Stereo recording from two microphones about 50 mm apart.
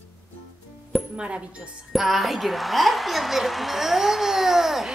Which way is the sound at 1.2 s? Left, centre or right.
Right.